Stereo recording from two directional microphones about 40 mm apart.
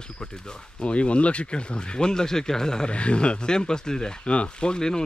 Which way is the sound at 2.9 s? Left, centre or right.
Left.